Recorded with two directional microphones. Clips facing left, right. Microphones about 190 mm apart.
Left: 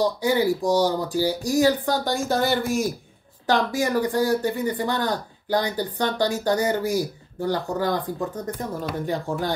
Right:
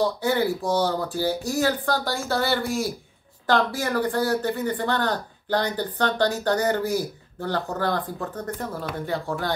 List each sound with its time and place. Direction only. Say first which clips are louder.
0.2 s speech: left 2 dB; 15° left (ahead or behind)